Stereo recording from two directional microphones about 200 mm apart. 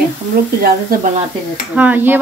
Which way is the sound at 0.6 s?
45° right (ahead or behind).